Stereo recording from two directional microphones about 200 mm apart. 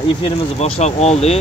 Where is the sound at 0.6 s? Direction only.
35° left (ahead or behind).